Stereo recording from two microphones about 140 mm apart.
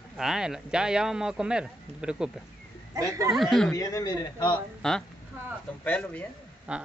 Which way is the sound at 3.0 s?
25° right (ahead or behind).